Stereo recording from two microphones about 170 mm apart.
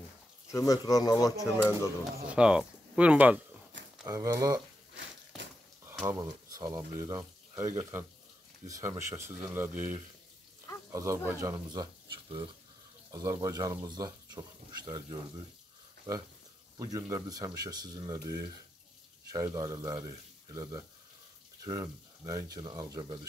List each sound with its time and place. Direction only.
0.5 s speech: 20° left (ahead or behind)
2.2 s speech: 5° right (ahead or behind)
4.0 s speech: 20° right (ahead or behind)
5.9 s speech: 15° right (ahead or behind)